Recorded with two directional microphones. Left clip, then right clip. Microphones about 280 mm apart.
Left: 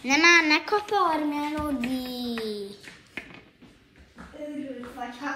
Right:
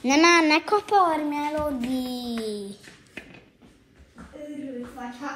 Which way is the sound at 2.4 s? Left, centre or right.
Right.